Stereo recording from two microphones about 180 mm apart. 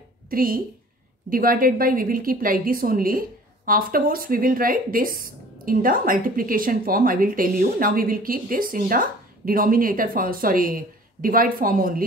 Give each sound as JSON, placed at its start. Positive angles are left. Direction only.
{"t": 0.3, "sound": "a woman's voice", "side_deg": -50}